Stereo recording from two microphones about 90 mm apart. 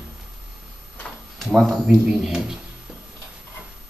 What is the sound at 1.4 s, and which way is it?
Speech, 5° right (ahead or behind).